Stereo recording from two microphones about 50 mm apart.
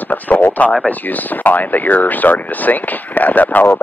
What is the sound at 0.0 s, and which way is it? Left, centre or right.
Speech, left.